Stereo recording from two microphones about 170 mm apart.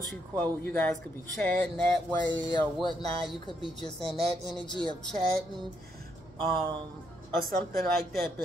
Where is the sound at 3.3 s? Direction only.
30° left (ahead or behind).